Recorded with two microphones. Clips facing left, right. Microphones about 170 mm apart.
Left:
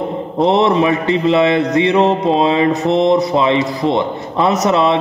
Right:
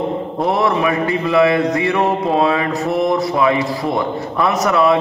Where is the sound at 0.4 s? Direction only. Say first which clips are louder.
Left 5 dB; 25° left (ahead or behind).